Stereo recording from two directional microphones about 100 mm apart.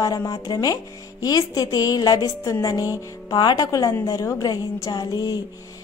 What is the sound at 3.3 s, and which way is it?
Speech, 45° left (ahead or behind).